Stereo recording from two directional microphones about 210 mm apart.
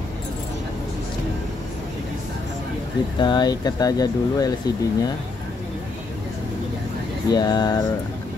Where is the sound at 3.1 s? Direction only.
20° left (ahead or behind).